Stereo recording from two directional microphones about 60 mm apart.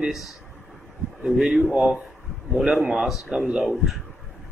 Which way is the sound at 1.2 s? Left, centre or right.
Centre.